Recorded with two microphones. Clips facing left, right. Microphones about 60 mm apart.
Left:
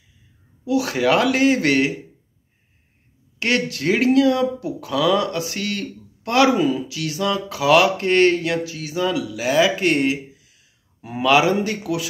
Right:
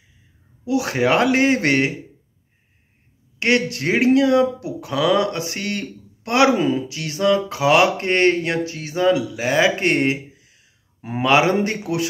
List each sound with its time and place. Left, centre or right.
0.7 s speech: right
3.3 s speech: right